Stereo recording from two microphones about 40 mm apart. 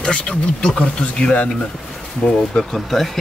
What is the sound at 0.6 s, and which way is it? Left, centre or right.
Speech, centre.